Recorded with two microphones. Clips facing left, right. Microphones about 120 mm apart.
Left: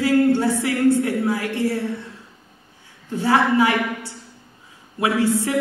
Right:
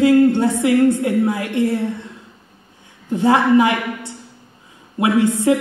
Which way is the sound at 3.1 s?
20° right (ahead or behind).